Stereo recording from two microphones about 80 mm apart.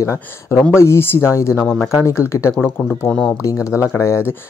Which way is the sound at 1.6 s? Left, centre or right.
Centre.